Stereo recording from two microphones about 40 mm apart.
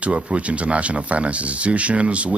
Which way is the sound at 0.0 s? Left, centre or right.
Right.